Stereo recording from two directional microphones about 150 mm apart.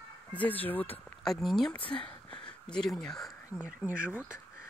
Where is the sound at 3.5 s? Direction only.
10° right (ahead or behind).